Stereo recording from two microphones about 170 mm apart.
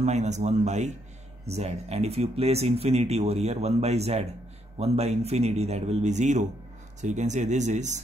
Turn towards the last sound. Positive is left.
turn(degrees=-45)  # may be behind; listen again after turning